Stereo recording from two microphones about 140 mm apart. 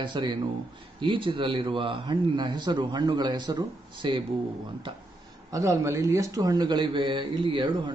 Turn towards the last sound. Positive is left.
turn(degrees=-35)  # may be behind; listen again after turning